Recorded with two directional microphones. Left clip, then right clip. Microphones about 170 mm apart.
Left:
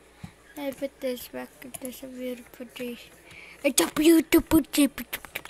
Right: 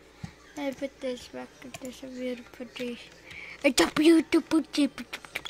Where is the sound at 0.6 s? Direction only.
Centre (ahead or behind).